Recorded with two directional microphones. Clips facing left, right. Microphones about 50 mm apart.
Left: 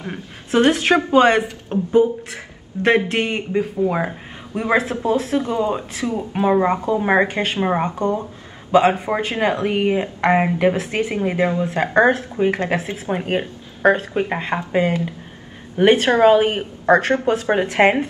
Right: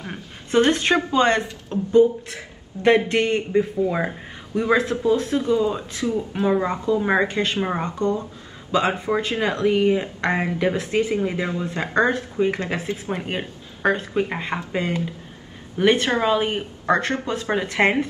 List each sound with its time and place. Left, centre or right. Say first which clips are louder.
0.1 s a woman's voice: left 1 dB; centre
1.7 s speech: even; left
3.1 s a woman's voice: right 1 dB; centre
4.6 s speech: left 1 dB; left
6.3 s speech: left 7 dB; left
13.1 s a woman's voice: left 10 dB; centre